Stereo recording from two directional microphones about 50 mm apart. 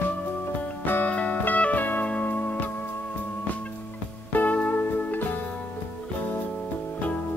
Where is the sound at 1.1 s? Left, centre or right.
Left.